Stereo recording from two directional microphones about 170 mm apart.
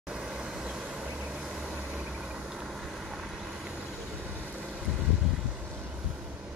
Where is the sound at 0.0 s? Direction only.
5° right (ahead or behind).